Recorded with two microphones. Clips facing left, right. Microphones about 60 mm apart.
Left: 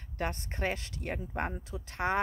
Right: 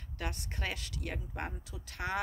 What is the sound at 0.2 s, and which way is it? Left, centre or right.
Speech, left.